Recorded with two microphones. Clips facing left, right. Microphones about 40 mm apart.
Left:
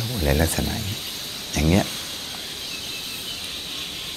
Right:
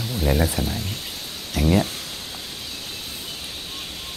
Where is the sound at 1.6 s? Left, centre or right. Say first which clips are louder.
Right 1 dB; left.